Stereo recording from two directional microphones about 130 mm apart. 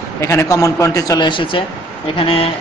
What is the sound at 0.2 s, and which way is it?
A man's voice, 20° left (ahead or behind).